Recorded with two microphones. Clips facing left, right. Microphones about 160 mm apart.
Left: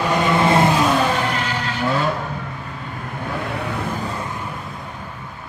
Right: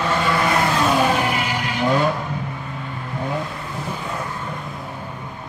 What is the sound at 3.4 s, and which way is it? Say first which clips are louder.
Vehicle: left 5 dB; 65° left (ahead or behind).